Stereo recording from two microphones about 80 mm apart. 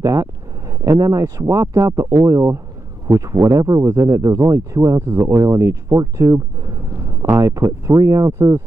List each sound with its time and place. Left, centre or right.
0.0 s speech: right
8.3 s speech: right